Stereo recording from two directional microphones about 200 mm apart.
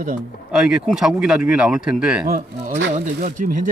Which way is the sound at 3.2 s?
40° right (ahead or behind).